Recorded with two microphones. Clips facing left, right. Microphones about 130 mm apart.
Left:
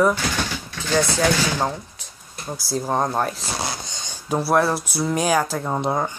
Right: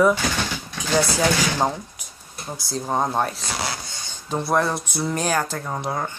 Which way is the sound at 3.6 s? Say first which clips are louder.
Even; 20° left (ahead or behind).